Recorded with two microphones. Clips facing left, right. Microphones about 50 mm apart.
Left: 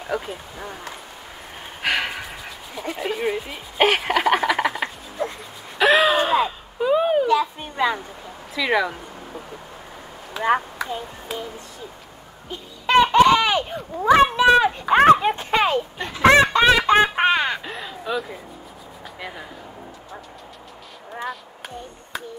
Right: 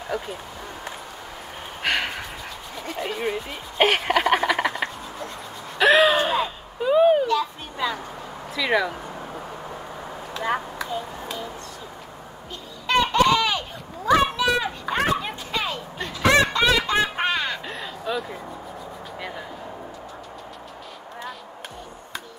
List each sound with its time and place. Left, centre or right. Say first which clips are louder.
0.1 s speech: left 3 dB; centre
1.8 s gasp: left 1 dB; centre
2.7 s speech: left 3 dB; centre
5.2 s dog: left 10 dB; left
5.8 s gasp: even; centre
7.7 s a sound: left 5 dB; left
8.5 s speech: left 1 dB; centre
10.4 s speech: left 5 dB; centre
12.4 s a sound: left 4 dB; left
14.1 s speech: left 5 dB; left
16.0 s speech: left 4 dB; left
17.6 s speech: left 1 dB; centre